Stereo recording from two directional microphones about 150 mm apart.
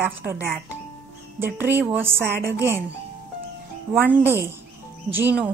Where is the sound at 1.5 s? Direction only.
15° right (ahead or behind).